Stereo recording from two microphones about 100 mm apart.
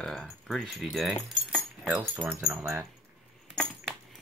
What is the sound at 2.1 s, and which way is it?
Speech, 20° right (ahead or behind).